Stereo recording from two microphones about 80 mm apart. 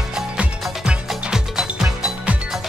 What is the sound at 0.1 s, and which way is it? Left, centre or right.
Music, centre.